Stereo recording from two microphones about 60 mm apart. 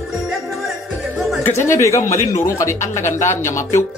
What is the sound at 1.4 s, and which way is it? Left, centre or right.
Speech, left.